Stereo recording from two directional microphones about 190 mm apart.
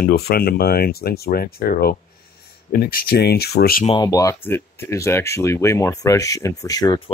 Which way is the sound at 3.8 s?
20° left (ahead or behind).